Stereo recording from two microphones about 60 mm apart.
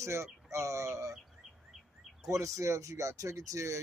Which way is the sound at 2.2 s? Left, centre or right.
Right.